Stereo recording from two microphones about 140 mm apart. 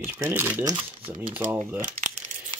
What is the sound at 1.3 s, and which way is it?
Speech, 15° right (ahead or behind).